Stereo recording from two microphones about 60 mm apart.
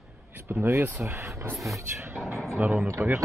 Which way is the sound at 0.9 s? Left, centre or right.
Right.